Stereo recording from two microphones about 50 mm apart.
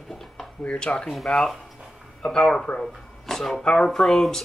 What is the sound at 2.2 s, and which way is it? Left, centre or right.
Speech, centre.